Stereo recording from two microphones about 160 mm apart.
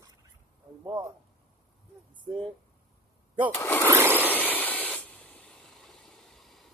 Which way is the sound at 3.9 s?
10° right (ahead or behind).